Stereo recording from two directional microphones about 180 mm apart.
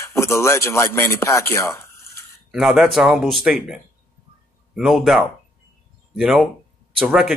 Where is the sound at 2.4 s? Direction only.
Centre (ahead or behind).